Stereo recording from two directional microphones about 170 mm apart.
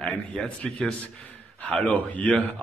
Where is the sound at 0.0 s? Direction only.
5° left (ahead or behind).